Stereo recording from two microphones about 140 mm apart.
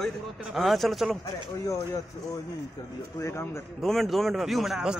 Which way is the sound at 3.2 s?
20° left (ahead or behind).